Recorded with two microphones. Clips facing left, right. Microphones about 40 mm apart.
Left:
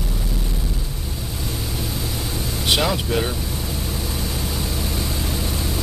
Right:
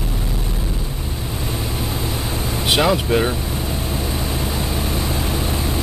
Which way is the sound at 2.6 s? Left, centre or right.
Centre.